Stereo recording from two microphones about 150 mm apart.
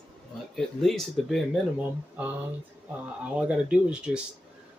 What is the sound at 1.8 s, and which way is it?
Speech, 10° right (ahead or behind).